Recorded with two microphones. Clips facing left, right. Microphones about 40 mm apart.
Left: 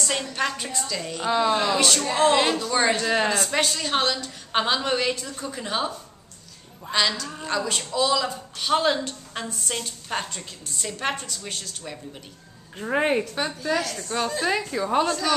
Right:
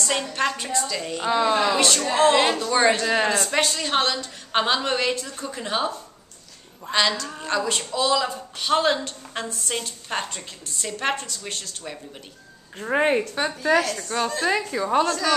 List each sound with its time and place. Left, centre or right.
0.3 s a woman's voice: centre
13.6 s speech: right
14.1 s a woman's voice: centre